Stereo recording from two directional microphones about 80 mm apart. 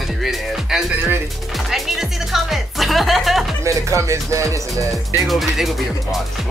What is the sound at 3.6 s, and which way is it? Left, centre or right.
Speech, right.